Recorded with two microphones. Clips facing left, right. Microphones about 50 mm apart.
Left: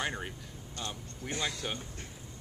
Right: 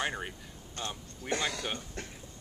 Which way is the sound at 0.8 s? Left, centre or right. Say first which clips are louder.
Right 2 dB; right.